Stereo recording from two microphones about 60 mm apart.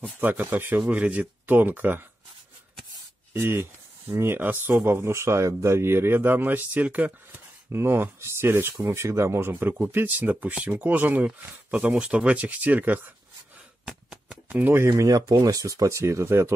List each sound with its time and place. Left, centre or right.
0.0 s speech: right
0.7 s speech: right
1.4 s speech: right
3.3 s speech: right
7.7 s speech: right
13.8 s a sound: centre
14.5 s speech: right
14.8 s speech: right